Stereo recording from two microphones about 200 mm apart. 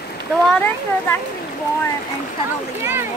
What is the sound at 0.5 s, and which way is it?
Speech, 5° left (ahead or behind).